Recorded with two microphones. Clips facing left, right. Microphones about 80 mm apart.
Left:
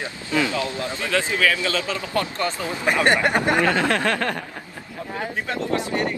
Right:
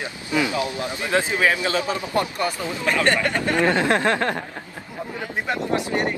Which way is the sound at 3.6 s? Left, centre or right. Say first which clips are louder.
Right 1 dB; right.